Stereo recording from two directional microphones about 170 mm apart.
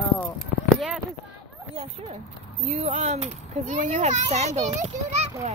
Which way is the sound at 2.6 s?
40° right (ahead or behind).